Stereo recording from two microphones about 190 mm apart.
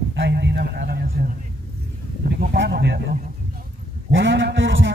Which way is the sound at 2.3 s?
60° right (ahead or behind).